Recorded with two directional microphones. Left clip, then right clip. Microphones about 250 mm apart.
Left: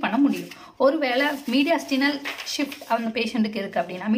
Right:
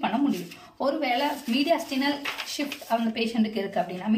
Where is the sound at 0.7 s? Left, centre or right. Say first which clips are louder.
Left 5 dB; centre.